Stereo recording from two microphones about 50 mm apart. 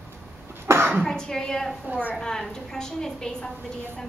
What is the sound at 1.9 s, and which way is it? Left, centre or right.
Speech, right.